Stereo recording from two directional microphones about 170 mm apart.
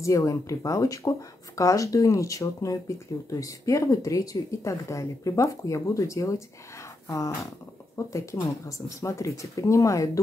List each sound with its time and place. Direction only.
0.0 s speech: 20° left (ahead or behind)